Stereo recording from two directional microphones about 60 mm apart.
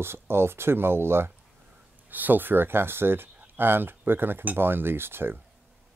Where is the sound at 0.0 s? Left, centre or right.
Right.